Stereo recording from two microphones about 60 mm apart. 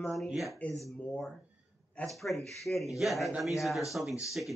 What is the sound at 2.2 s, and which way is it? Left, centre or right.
Speech, centre.